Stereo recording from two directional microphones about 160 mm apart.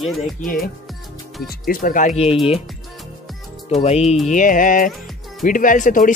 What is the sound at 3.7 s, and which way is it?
Speech, 40° left (ahead or behind).